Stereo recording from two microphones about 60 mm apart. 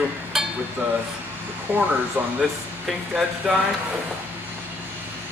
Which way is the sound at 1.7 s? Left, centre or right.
Right.